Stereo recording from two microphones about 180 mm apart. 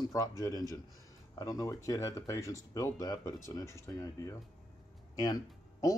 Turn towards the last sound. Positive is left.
turn(degrees=20)  # may be behind; listen again after turning